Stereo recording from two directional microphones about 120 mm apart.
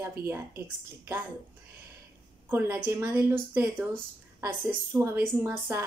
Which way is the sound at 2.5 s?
20° right (ahead or behind).